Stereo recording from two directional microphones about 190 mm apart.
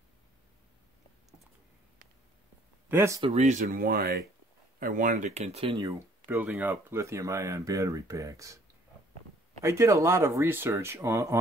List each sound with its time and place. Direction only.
2.9 s speech: 15° right (ahead or behind)
3.2 s speech: 30° right (ahead or behind)
5.8 s speech: 15° right (ahead or behind)
9.6 s speech: 15° right (ahead or behind)